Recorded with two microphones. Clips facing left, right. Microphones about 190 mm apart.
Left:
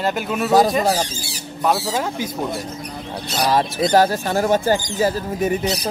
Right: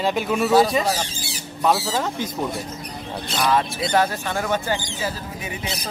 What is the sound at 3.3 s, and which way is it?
Speech, 40° left (ahead or behind).